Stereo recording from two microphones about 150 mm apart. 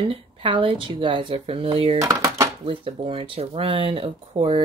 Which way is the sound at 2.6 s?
35° right (ahead or behind).